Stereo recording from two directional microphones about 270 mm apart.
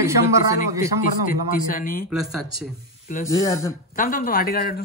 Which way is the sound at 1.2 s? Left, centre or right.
Left.